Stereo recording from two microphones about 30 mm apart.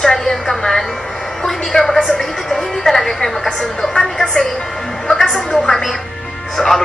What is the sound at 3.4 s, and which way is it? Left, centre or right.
A woman's voice, left.